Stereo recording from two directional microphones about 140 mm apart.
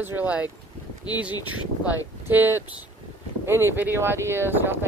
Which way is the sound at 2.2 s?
15° right (ahead or behind).